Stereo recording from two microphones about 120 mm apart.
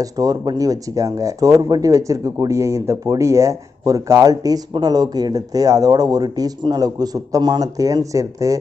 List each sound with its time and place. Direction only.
0.0 s speech: 30° right (ahead or behind)